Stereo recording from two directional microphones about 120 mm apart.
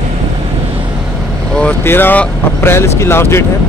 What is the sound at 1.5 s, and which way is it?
Speech, 10° left (ahead or behind).